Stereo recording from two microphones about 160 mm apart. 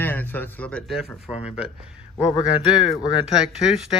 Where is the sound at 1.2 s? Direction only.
5° right (ahead or behind).